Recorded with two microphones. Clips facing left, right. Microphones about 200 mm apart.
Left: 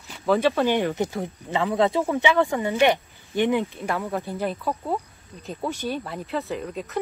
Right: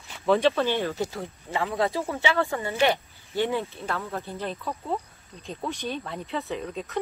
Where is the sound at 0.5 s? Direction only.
15° left (ahead or behind).